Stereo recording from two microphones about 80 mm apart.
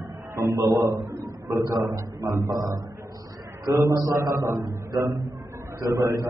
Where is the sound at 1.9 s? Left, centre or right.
Right.